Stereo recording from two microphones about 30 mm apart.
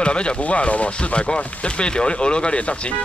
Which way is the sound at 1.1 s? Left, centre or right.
Left.